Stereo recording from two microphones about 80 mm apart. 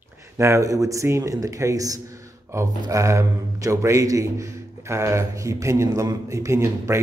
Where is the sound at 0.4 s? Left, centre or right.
Right.